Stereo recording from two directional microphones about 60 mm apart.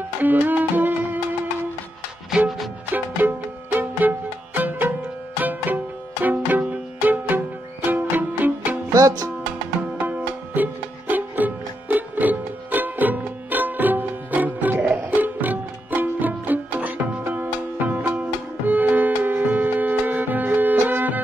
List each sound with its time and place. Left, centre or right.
0.2 s music: right
2.9 s music: right
8.9 s music: right
9.9 s music: right